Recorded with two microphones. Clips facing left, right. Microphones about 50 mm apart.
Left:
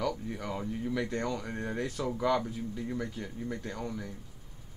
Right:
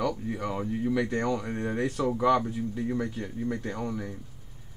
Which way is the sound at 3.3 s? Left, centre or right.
Centre.